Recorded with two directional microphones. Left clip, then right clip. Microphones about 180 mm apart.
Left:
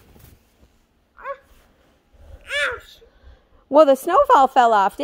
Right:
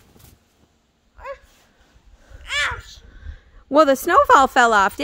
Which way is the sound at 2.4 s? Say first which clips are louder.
Even; 25° right (ahead or behind).